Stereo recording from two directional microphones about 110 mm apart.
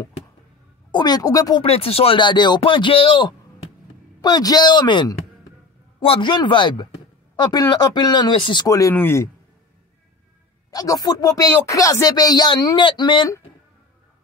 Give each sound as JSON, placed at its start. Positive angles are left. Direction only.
{"t": 0.9, "sound": "speech", "side_deg": 40}
{"t": 1.6, "sound": "speech", "side_deg": 60}
{"t": 8.6, "sound": "speech", "side_deg": 30}
{"t": 10.7, "sound": "speech", "side_deg": 35}